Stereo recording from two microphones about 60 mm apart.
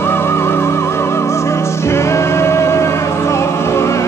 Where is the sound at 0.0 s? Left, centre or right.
Left.